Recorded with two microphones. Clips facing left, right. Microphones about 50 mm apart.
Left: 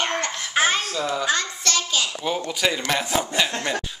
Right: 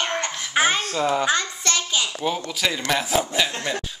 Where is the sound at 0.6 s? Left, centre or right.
Centre.